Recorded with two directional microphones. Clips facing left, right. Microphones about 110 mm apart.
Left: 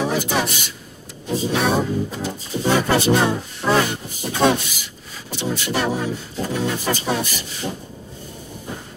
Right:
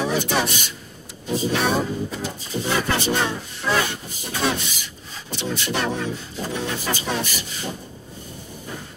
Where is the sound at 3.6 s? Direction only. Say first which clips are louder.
Left 4 dB; 25° left (ahead or behind).